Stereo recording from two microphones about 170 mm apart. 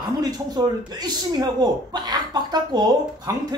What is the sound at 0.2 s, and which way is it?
A man's voice, 25° right (ahead or behind).